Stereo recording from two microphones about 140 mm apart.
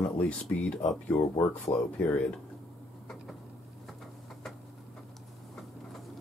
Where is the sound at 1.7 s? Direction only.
35° left (ahead or behind).